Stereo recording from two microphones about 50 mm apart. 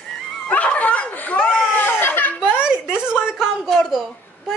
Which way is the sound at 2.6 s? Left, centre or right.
Centre.